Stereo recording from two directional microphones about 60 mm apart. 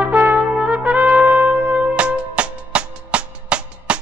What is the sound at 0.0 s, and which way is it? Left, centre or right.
Trumpet, right.